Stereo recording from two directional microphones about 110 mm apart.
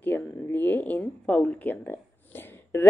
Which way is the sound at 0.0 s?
15° left (ahead or behind).